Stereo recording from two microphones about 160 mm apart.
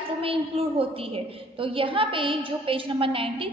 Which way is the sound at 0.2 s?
35° right (ahead or behind).